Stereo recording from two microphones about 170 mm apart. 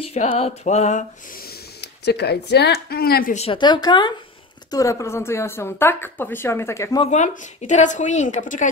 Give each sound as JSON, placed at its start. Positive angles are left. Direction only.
{"t": 0.1, "sound": "a woman's voice", "side_deg": 35}
{"t": 1.4, "sound": "speech", "side_deg": 70}
{"t": 3.3, "sound": "a woman's voice", "side_deg": 30}
{"t": 7.1, "sound": "a woman's voice", "side_deg": 45}